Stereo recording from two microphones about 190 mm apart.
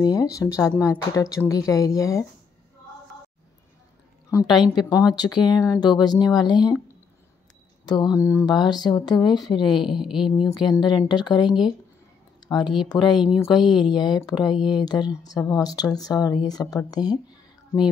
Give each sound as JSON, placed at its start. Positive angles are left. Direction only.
{"t": 0.0, "sound": "speech", "side_deg": 20}
{"t": 4.3, "sound": "speech", "side_deg": 15}
{"t": 7.8, "sound": "speech", "side_deg": 20}
{"t": 9.7, "sound": "speech", "side_deg": 0}
{"t": 10.6, "sound": "speech", "side_deg": 25}
{"t": 11.4, "sound": "speech", "side_deg": -5}
{"t": 12.4, "sound": "speech", "side_deg": 20}
{"t": 13.1, "sound": "speech", "side_deg": -5}
{"t": 13.8, "sound": "speech", "side_deg": 20}
{"t": 14.5, "sound": "speech", "side_deg": -5}
{"t": 14.8, "sound": "speech", "side_deg": 20}